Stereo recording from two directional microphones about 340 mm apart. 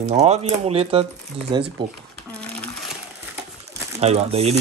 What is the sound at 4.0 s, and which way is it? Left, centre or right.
Speech, centre.